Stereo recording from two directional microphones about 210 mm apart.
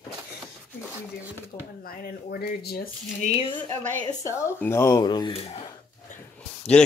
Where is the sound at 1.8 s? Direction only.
45° left (ahead or behind).